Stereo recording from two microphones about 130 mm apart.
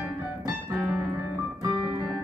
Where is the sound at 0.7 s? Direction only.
10° right (ahead or behind).